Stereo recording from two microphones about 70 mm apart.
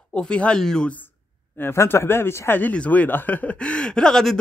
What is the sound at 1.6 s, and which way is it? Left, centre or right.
Speech, left.